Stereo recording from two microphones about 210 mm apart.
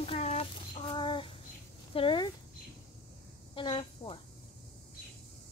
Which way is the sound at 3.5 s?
25° left (ahead or behind).